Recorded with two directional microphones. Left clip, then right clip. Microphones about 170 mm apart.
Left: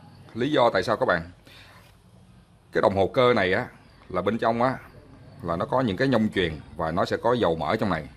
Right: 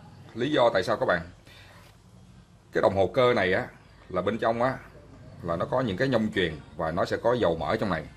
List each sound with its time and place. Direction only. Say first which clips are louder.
0.3 s a man's voice: left 2 dB; 35° left (ahead or behind)
2.7 s a man's voice: left 2 dB; 35° left (ahead or behind)